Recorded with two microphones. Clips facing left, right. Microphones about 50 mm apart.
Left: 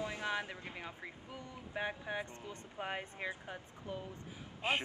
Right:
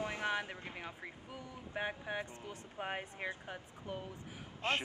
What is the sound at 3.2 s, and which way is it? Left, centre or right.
Speech, right.